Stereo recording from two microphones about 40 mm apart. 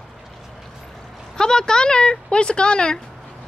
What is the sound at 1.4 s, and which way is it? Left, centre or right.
Speech, centre.